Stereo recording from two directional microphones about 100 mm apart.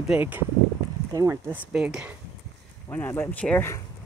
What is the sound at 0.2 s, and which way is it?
Speech, 20° right (ahead or behind).